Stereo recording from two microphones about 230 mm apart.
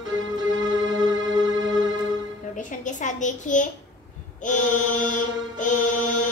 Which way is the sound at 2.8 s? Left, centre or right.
Left.